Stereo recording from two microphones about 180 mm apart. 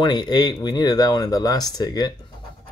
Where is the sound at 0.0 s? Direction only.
25° left (ahead or behind).